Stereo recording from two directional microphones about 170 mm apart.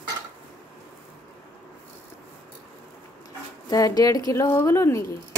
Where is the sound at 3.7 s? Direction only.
20° left (ahead or behind).